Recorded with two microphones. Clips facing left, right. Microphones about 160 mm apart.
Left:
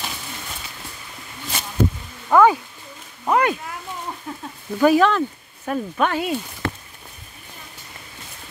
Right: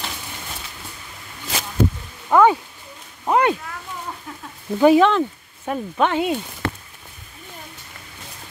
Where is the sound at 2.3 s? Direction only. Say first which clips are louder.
Even; 20° right (ahead or behind).